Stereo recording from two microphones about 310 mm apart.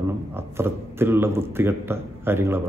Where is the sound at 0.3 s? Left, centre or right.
Centre.